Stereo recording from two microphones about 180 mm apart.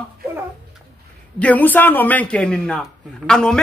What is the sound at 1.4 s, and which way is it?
A man's voice, 10° left (ahead or behind).